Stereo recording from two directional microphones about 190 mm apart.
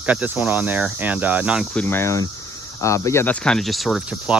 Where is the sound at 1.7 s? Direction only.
10° left (ahead or behind).